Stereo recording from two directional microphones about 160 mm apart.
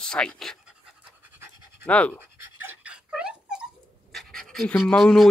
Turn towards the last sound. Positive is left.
turn(degrees=0)  # may be behind; listen again after turning